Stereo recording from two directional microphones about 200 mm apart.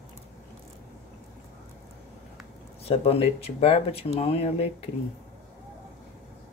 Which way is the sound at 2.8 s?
30° left (ahead or behind).